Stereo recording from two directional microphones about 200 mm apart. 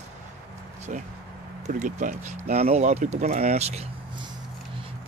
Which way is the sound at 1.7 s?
40° right (ahead or behind).